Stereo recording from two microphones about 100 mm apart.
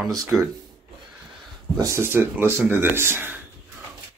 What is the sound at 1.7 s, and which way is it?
Speech, 30° right (ahead or behind).